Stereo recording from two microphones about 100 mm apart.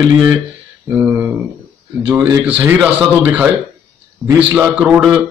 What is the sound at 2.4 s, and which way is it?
A man's voice, 15° right (ahead or behind).